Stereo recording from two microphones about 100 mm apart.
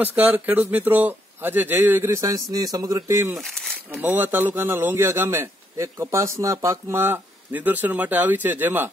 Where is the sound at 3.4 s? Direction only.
5° left (ahead or behind).